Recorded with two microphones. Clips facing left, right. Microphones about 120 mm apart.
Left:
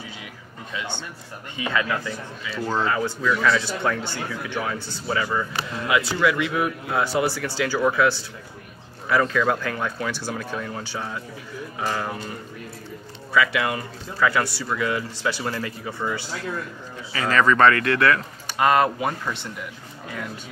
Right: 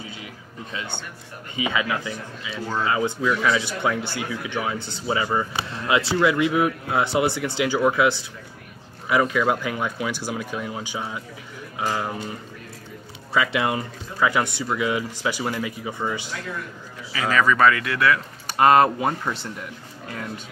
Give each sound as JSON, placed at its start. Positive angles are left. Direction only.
{"t": 1.6, "sound": "speech", "side_deg": -10}
{"t": 13.3, "sound": "speech", "side_deg": -25}
{"t": 17.1, "sound": "speech", "side_deg": -5}
{"t": 18.7, "sound": "speech", "side_deg": -30}